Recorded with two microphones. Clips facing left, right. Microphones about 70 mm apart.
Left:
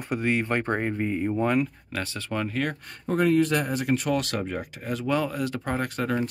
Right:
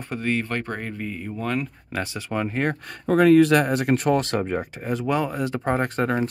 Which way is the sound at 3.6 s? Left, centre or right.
Right.